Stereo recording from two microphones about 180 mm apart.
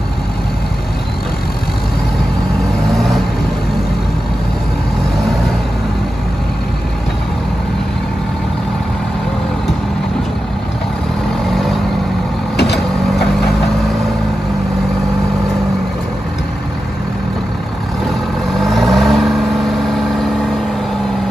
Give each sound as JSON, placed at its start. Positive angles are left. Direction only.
{"t": 12.5, "sound": "vehicle", "side_deg": 65}
{"t": 18.7, "sound": "vehicle", "side_deg": 0}